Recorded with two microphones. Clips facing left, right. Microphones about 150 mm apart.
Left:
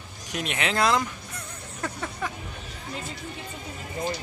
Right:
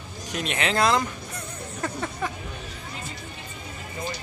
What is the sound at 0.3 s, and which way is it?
Speech, 10° left (ahead or behind).